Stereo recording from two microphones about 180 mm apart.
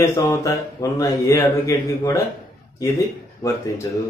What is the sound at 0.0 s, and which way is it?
Speech, 15° left (ahead or behind).